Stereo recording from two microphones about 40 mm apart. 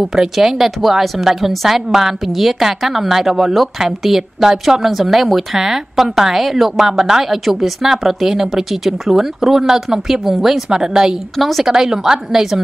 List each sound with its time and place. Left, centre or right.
0.0 s speech: centre
11.3 s a woman's voice: centre
11.7 s speech: centre